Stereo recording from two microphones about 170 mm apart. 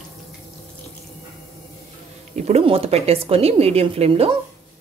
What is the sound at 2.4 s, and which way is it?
Speech, 35° right (ahead or behind).